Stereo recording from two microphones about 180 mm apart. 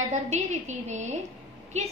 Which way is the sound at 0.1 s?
40° right (ahead or behind).